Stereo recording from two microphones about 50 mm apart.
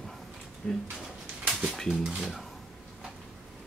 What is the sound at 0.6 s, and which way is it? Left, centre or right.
Speech, left.